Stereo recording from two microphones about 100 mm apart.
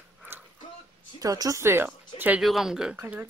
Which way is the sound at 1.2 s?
35° right (ahead or behind).